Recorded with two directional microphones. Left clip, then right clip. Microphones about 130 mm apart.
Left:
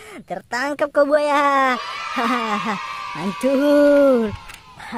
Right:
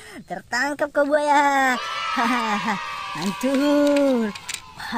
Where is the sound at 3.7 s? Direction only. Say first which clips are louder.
Left 6 dB; 50° left (ahead or behind).